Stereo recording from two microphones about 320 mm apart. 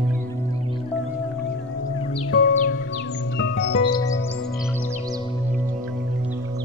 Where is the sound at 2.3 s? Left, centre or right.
Left.